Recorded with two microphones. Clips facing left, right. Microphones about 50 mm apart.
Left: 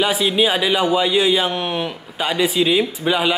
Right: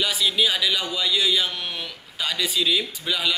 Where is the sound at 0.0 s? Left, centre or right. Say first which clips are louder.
Left 6 dB; left.